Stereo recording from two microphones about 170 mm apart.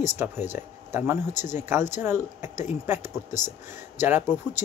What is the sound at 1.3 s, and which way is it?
Speech, 45° left (ahead or behind).